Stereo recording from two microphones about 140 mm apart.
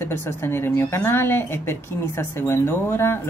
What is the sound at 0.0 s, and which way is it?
A woman's voice, 15° left (ahead or behind).